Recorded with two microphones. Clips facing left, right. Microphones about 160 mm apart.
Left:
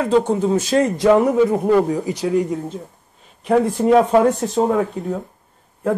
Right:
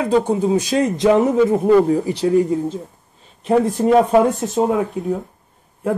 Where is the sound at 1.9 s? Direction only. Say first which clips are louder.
Right 4 dB; 15° left (ahead or behind).